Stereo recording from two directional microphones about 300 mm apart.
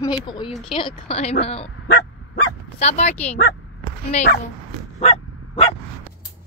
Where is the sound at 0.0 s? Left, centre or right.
Centre.